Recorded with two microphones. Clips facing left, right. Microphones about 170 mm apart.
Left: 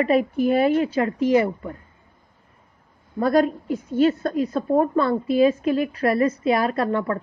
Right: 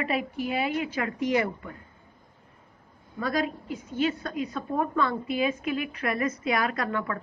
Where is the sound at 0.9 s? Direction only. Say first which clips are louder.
Left 8 dB; 30° left (ahead or behind).